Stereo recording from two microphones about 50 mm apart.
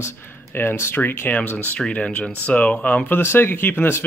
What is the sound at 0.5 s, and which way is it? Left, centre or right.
Speech, left.